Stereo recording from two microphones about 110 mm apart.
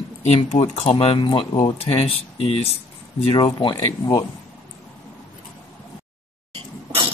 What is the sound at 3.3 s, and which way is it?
Speech, 55° left (ahead or behind).